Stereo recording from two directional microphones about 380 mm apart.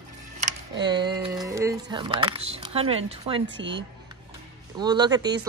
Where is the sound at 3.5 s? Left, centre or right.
Right.